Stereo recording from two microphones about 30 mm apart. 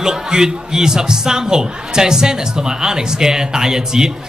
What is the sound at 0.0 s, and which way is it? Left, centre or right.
A man's voice, right.